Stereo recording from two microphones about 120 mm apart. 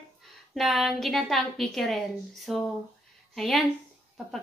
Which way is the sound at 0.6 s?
Centre (ahead or behind).